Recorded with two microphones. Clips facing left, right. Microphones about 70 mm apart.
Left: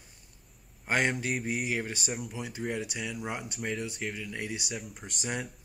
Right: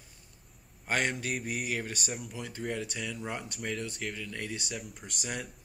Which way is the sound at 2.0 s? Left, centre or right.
Centre.